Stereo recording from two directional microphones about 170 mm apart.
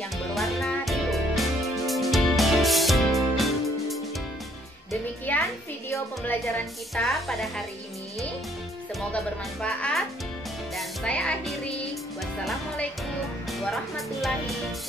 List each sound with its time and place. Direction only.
0.3 s music: centre (ahead or behind)
5.3 s music: 10° left (ahead or behind)
7.0 s speech: centre (ahead or behind)
9.1 s speech: 5° left (ahead or behind)
10.8 s music: 5° left (ahead or behind)
13.5 s speech: centre (ahead or behind)